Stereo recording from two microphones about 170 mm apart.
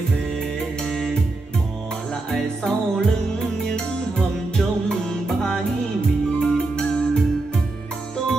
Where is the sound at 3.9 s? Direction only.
5° left (ahead or behind).